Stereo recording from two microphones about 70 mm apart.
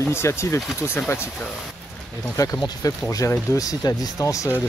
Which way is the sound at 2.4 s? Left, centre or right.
Left.